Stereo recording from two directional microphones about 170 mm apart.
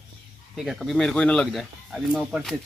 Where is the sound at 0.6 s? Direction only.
Centre (ahead or behind).